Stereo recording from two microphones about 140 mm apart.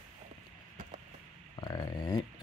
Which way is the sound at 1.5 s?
25° left (ahead or behind).